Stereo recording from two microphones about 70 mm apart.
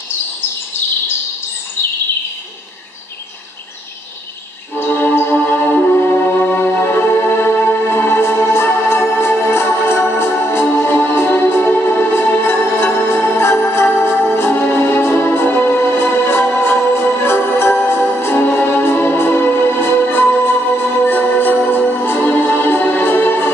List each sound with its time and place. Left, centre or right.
4.7 s music: left